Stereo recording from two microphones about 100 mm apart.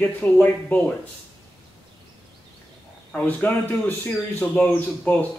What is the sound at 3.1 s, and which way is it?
Speech, 15° left (ahead or behind).